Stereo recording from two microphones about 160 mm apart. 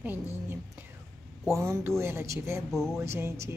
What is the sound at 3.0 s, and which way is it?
Speech, 15° right (ahead or behind).